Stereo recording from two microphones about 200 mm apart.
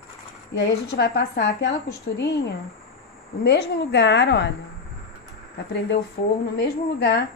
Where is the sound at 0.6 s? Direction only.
55° left (ahead or behind).